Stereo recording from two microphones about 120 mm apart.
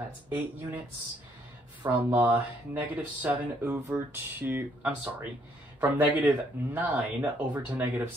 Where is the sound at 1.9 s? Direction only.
15° right (ahead or behind).